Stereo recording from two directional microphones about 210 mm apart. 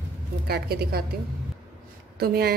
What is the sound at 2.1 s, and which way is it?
Speech, 50° right (ahead or behind).